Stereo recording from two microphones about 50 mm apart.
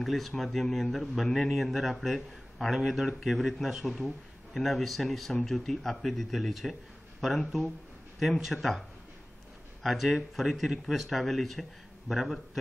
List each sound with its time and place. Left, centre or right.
0.0 s a man's voice: centre
9.8 s a man's voice: centre